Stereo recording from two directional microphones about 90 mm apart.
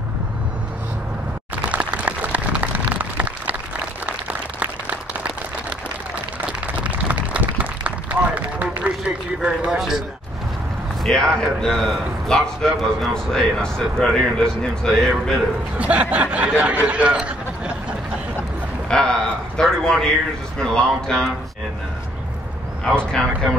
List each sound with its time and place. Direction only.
1.5 s a sound: 15° right (ahead or behind)
6.8 s run: 15° right (ahead or behind)
9.7 s a man's voice: 5° right (ahead or behind)
11.1 s a man's voice: 5° left (ahead or behind)
15.8 s speech: 15° right (ahead or behind)
16.8 s a sound: 15° right (ahead or behind)
18.9 s a sound: 10° left (ahead or behind)
20.5 s a man's voice: 5° left (ahead or behind)
22.8 s a man's voice: 5° left (ahead or behind)